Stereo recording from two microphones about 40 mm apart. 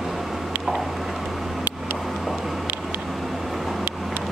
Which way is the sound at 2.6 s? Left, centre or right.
Right.